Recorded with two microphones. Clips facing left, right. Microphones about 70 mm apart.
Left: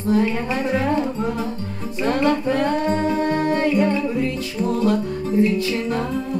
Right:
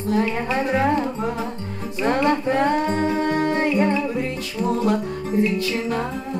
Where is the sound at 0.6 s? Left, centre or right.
Right.